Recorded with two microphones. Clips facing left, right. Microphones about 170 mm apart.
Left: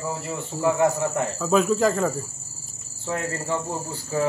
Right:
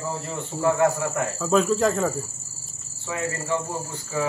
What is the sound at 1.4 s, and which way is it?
Speech, 5° left (ahead or behind).